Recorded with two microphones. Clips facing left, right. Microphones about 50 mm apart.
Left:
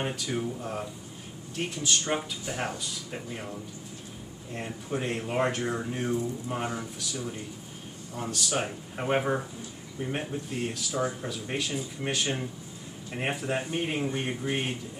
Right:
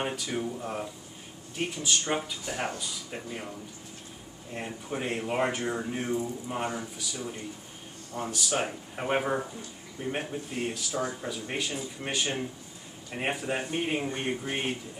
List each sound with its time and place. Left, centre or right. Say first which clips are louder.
0.0 s speech: even; centre
4.6 s speech: left 1 dB; centre
10.9 s speech: left 5 dB; centre
11.2 s speech: left 1 dB; centre